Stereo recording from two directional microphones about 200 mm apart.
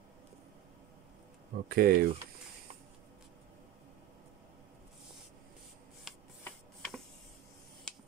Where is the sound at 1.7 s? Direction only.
50° right (ahead or behind).